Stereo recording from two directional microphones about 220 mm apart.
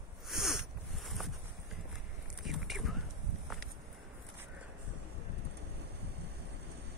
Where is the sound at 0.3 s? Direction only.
Centre (ahead or behind).